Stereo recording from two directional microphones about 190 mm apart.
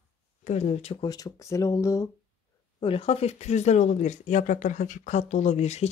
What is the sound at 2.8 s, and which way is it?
Speech, 30° left (ahead or behind).